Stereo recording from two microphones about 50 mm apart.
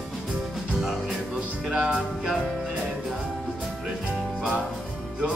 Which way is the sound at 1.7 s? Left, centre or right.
Right.